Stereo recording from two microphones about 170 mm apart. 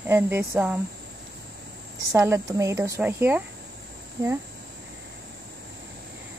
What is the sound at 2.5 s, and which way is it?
Speech, 20° right (ahead or behind).